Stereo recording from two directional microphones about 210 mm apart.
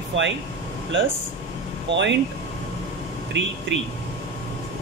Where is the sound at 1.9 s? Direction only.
60° right (ahead or behind).